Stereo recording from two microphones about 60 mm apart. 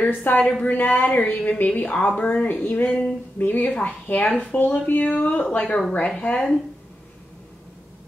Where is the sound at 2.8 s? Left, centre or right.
Centre.